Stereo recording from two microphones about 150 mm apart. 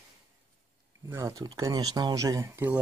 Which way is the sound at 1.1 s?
25° right (ahead or behind).